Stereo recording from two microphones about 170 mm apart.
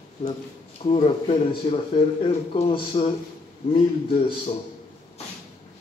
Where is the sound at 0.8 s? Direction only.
35° left (ahead or behind).